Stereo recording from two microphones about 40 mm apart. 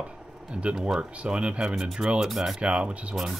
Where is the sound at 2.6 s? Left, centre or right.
Right.